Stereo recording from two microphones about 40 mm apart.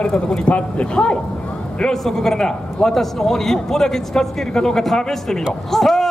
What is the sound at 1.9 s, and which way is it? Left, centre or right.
A man's voice, centre.